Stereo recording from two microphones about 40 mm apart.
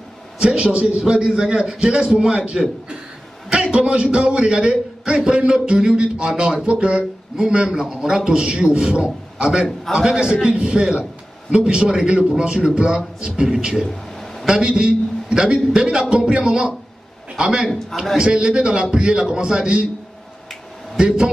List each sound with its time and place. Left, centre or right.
0.4 s a man's voice: right
3.4 s a man's voice: right
14.1 s a sound: centre
14.4 s a man's voice: right
17.4 s a man's voice: centre
18.1 s a man's voice: centre
20.9 s a man's voice: centre